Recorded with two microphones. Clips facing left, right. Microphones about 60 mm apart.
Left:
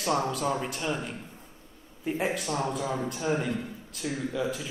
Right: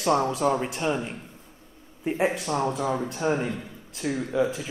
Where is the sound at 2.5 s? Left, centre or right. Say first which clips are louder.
Right 4 dB; right.